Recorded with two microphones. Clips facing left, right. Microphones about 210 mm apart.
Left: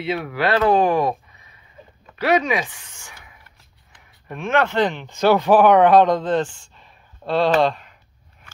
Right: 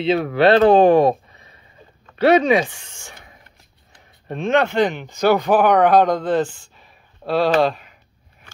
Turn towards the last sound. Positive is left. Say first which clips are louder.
# right 1 dB
turn(degrees=-5)  # may be behind; listen again after turning